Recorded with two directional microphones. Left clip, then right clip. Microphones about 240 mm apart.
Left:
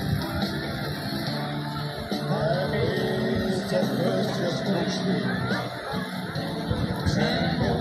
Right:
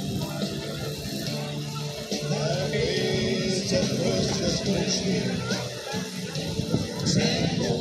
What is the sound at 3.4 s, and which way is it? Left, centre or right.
Vehicle, right.